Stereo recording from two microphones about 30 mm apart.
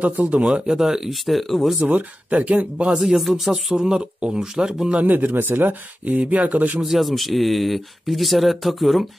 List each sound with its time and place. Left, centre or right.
0.0 s speech: right
0.4 s speech: centre
1.2 s speech: centre
1.9 s speech: right
2.5 s speech: right
3.0 s speech: centre
3.7 s speech: right
5.0 s speech: right
6.1 s speech: right
6.8 s speech: centre